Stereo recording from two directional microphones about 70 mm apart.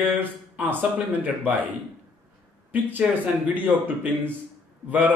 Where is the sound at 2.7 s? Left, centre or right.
Right.